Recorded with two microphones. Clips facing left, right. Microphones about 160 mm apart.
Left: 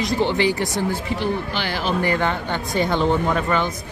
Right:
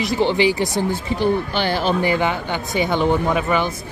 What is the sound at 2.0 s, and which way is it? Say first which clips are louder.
Speech: right 2 dB; 10° right (ahead or behind).